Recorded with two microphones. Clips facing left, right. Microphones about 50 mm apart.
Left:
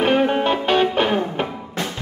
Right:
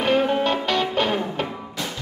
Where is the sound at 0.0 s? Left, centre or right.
Left.